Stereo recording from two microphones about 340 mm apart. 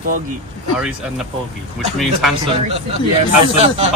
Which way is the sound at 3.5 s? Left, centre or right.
Centre.